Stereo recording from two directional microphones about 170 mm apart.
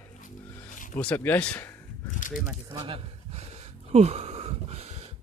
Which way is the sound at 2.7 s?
30° right (ahead or behind).